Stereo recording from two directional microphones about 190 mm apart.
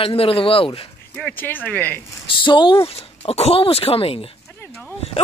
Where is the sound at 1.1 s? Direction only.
5° left (ahead or behind).